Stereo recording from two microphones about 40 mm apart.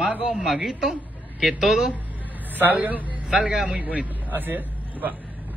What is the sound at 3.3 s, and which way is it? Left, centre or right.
Speech, right.